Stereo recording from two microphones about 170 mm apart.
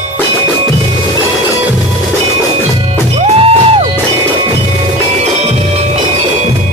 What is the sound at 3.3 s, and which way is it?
Music, 35° right (ahead or behind).